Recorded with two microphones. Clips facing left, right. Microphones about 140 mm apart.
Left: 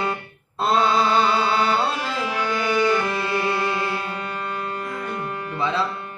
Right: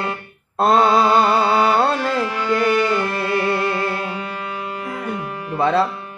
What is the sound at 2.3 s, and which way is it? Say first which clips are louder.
Music: right 3 dB; 5° left (ahead or behind).